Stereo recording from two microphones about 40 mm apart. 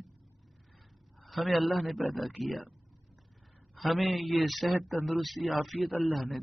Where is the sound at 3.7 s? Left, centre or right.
Centre.